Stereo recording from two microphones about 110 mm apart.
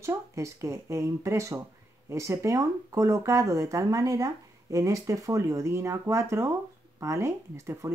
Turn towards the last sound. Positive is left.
turn(degrees=-25)  # may be behind; listen again after turning